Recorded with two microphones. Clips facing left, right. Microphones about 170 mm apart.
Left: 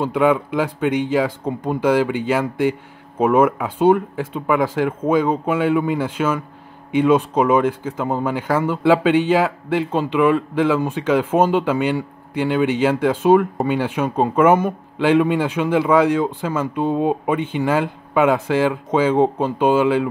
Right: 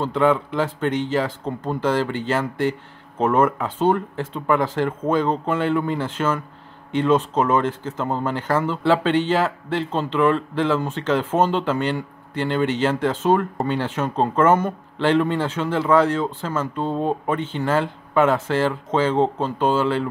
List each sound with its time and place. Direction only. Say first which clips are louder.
0.0 s speech: left 2 dB; 10° left (ahead or behind)